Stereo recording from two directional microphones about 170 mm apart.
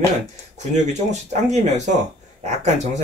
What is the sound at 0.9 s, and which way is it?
Speech, 45° right (ahead or behind).